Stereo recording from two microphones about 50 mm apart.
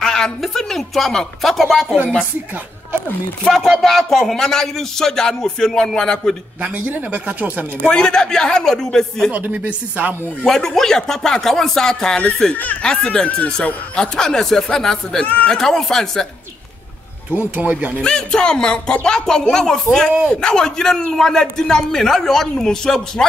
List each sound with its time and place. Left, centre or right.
0.0 s a sound: centre
0.4 s speech: centre
3.4 s a man's voice: centre
6.6 s speech: right
7.8 s a man's voice: centre
9.3 s speech: right
10.4 s a man's voice: centre
15.2 s speech: left
15.5 s a man's voice: centre
17.3 s speech: right
18.0 s a man's voice: centre